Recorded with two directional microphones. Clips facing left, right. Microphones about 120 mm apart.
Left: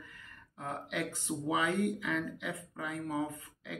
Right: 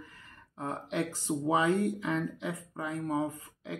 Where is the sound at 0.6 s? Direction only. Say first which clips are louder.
Right 4 dB; 30° right (ahead or behind).